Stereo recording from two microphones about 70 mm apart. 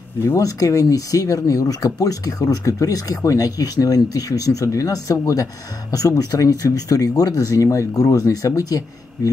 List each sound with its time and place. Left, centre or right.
0.4 s speech: left